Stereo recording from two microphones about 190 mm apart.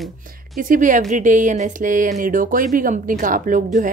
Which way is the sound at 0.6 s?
45° right (ahead or behind).